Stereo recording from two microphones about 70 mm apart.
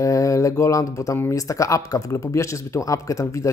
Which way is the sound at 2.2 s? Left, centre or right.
Left.